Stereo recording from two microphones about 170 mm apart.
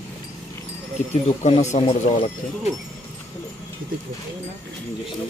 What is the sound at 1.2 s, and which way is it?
Speech, 40° left (ahead or behind).